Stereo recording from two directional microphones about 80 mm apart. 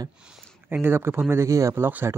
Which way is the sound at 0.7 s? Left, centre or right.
Right.